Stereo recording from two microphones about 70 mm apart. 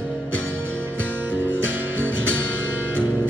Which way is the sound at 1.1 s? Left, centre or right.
Right.